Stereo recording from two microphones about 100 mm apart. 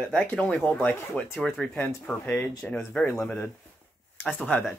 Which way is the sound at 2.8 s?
5° left (ahead or behind).